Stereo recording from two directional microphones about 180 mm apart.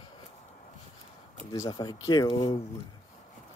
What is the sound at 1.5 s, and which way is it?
Speech, 20° left (ahead or behind).